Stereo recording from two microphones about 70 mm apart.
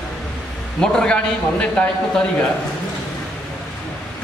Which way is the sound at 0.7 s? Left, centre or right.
Centre.